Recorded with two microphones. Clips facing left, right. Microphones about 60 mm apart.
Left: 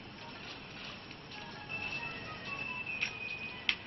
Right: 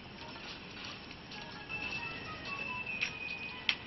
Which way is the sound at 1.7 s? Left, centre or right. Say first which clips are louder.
Even; centre.